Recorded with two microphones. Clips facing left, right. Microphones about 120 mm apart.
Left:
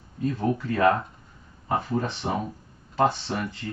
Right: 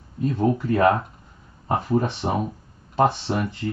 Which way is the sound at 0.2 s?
20° right (ahead or behind).